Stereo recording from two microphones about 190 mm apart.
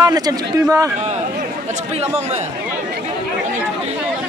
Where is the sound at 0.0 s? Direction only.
20° right (ahead or behind).